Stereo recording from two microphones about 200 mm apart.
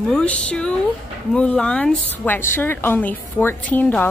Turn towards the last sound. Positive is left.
turn(degrees=10)  # may be behind; listen again after turning